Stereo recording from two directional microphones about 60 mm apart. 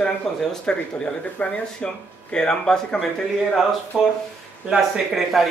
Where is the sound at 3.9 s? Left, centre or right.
Centre.